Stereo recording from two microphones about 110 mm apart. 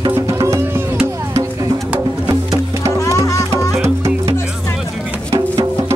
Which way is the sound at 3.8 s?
25° right (ahead or behind).